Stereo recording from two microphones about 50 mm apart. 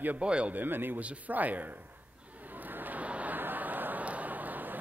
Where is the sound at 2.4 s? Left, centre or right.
Right.